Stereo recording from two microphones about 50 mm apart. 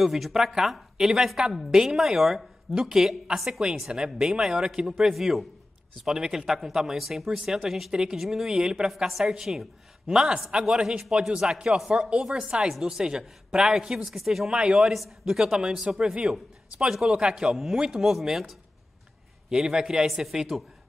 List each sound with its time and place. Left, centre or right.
0.0 s a man's voice: centre
14.6 s a man's voice: centre
14.9 s a man's voice: centre
17.5 s a man's voice: centre